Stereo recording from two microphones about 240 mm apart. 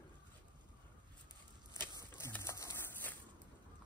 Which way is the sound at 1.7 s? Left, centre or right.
Centre.